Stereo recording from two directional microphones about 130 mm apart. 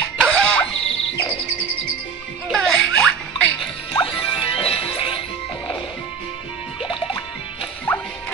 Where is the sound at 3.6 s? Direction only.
40° left (ahead or behind).